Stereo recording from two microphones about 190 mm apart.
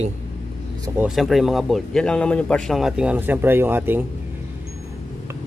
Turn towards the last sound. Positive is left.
turn(degrees=-10)  # may be behind; listen again after turning